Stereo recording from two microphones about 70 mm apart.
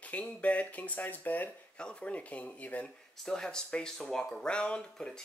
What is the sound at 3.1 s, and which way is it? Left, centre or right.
Speech, centre.